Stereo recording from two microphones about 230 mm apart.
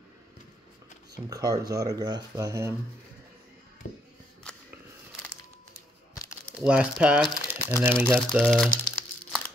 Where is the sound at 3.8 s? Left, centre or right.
Left.